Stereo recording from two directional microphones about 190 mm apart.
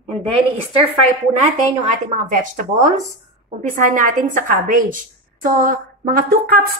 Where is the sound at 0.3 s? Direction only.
30° right (ahead or behind).